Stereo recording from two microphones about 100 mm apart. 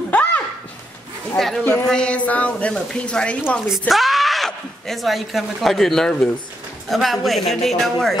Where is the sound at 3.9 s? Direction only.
Centre (ahead or behind).